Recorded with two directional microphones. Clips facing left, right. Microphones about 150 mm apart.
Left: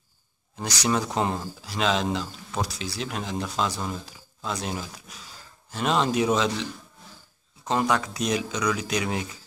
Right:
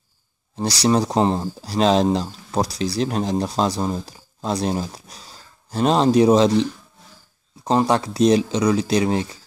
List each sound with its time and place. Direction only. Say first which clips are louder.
0.6 s speech: right 7 dB; 35° right (ahead or behind)